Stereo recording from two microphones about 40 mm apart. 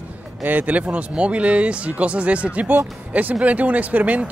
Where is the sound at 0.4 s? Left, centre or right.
Right.